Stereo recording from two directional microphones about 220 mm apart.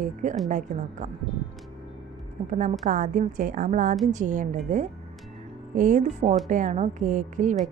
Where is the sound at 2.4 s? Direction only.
35° right (ahead or behind).